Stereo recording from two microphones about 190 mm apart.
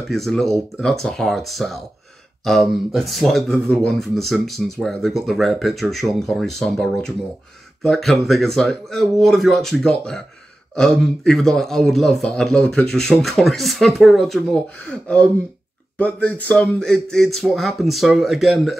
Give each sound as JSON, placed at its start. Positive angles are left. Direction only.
{"t": 0.1, "sound": "speech", "side_deg": 0}